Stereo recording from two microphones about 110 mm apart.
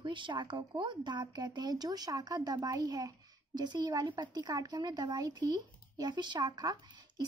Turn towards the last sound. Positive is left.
turn(degrees=-40)  # may be behind; listen again after turning